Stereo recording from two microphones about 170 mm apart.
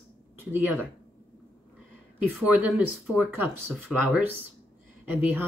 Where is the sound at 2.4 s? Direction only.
10° right (ahead or behind).